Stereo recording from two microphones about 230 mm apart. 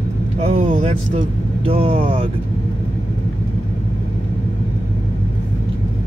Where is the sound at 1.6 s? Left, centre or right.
Right.